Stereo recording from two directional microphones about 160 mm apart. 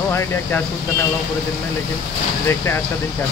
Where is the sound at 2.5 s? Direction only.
15° left (ahead or behind).